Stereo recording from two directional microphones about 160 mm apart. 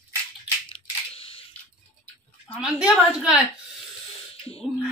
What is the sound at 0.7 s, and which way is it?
Camera, 35° left (ahead or behind).